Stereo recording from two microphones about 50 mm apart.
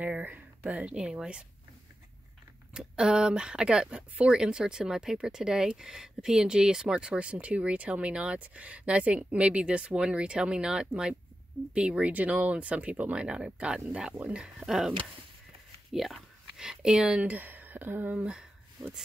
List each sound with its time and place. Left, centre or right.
0.0 s speech: right; by 1.4 s centre
2.7 s speech: centre
14.7 s speech: centre
17.2 s speech: right
18.3 s a sound: centre